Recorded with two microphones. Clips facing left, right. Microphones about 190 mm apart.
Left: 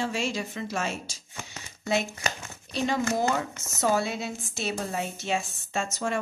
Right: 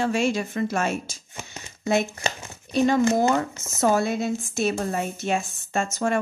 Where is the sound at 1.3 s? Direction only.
20° right (ahead or behind).